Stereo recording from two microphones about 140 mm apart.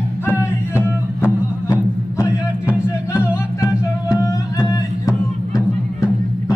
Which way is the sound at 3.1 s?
25° left (ahead or behind).